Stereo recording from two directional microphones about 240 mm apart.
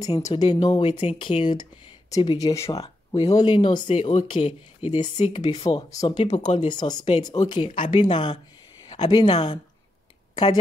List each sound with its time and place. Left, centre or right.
0.0 s speech: centre
6.1 s speech: left
7.7 s speech: left
8.0 s speech: centre